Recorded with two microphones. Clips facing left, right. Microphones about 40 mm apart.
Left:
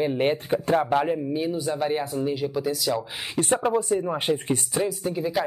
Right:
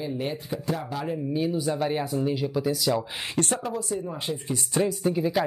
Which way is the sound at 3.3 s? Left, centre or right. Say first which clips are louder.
Left 3 dB; centre.